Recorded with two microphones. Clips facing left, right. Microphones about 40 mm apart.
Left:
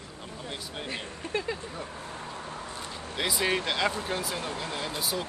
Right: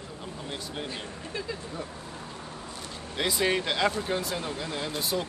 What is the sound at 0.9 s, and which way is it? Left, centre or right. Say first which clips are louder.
Speech: left 3 dB; left.